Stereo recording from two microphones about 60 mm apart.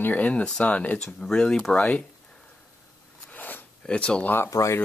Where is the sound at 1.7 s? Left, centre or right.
Left.